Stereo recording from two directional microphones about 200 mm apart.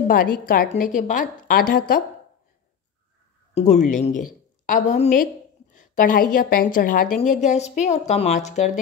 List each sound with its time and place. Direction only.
0.1 s a woman's voice: 45° left (ahead or behind)
3.5 s a woman's voice: 35° left (ahead or behind)